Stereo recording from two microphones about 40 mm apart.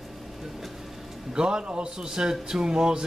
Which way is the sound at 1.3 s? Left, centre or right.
Right.